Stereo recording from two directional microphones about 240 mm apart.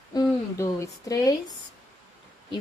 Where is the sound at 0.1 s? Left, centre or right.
Centre.